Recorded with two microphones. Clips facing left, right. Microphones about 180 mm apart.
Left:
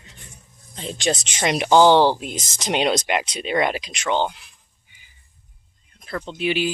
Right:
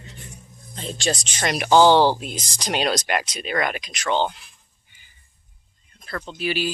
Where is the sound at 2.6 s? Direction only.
20° left (ahead or behind).